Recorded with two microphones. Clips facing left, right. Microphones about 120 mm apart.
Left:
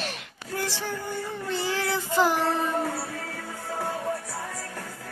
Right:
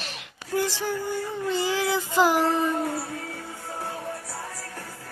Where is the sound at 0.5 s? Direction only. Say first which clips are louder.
Right 5 dB; 15° right (ahead or behind).